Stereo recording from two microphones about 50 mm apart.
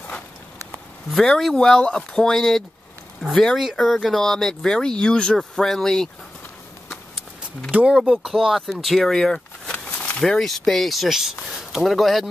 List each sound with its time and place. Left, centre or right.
1.1 s speech: centre
1.8 s speech: centre
5.4 s speech: centre
8.2 s speech: centre
9.7 s a sound: left
10.2 s speech: centre